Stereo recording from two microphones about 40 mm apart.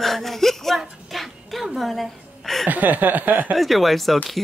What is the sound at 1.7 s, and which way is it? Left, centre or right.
Speech, centre.